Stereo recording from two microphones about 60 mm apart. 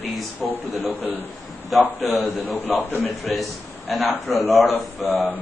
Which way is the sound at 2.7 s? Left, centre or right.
Left.